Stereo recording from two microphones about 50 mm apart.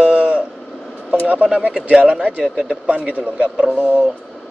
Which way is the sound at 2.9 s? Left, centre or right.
Right.